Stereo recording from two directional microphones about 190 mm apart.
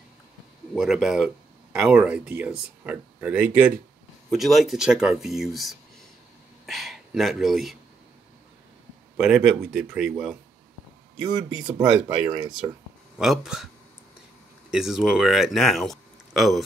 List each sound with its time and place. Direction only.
0.7 s speech: centre (ahead or behind)
9.1 s speech: 5° right (ahead or behind)
11.6 s speech: 25° right (ahead or behind)
13.2 s speech: centre (ahead or behind)
14.7 s speech: centre (ahead or behind)